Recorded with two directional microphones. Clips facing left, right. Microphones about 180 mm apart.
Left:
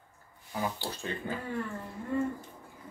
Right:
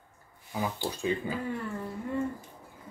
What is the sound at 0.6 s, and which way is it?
Speech, 15° right (ahead or behind).